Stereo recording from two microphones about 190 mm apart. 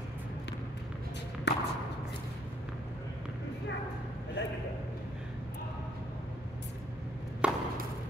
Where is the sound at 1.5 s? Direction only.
65° left (ahead or behind).